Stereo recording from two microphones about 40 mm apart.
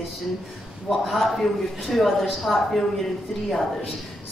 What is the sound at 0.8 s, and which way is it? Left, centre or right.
A man's voice, centre.